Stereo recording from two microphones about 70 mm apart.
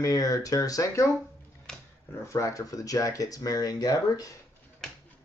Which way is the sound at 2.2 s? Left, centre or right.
Left.